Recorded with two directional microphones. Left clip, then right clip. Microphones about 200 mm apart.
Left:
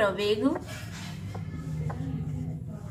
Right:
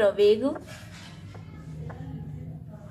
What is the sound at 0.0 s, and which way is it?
Speech, 35° right (ahead or behind).